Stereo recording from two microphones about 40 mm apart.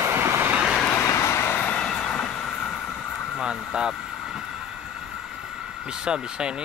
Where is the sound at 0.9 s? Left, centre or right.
Left.